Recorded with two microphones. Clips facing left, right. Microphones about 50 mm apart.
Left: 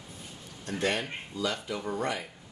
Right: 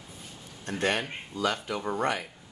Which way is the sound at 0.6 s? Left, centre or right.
Right.